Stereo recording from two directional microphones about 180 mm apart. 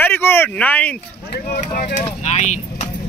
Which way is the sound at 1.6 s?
50° left (ahead or behind).